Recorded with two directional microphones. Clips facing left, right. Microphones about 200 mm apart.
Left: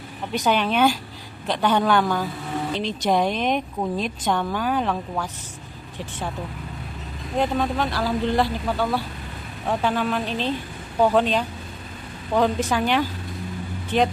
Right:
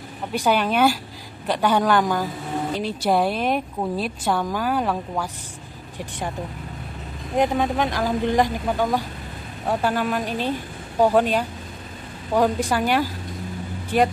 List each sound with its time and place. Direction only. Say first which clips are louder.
0.3 s speech: right 1 dB; 10° right (ahead or behind)
7.3 s speech: right 2 dB; 15° right (ahead or behind)